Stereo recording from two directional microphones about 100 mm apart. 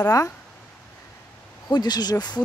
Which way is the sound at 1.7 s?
45° left (ahead or behind).